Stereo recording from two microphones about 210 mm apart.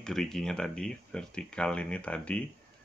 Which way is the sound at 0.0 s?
Centre (ahead or behind).